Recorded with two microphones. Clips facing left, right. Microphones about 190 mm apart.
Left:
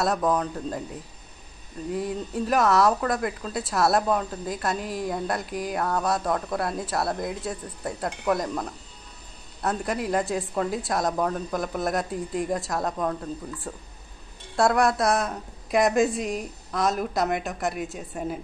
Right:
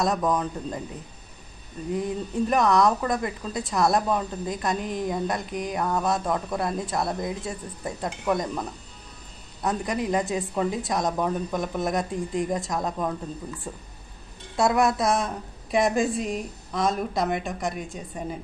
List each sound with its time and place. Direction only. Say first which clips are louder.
0.0 s a woman's voice: even; centre (ahead or behind)
2.0 s a woman's voice: right 2 dB; 5° left (ahead or behind)